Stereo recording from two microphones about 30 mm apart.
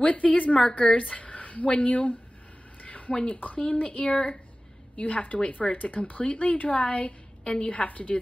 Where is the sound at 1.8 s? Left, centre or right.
Left.